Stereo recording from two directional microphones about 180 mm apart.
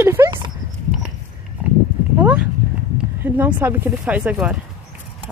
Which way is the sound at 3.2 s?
10° right (ahead or behind).